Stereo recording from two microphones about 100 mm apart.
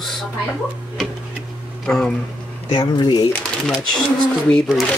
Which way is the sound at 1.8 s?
5° left (ahead or behind).